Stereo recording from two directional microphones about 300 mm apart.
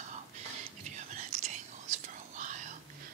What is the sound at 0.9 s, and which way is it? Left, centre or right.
Whispering, right.